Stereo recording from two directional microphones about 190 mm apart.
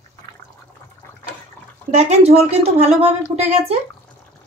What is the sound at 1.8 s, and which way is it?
A woman's voice, 35° right (ahead or behind).